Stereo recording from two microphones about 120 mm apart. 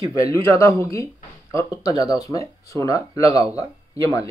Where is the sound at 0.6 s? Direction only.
25° left (ahead or behind).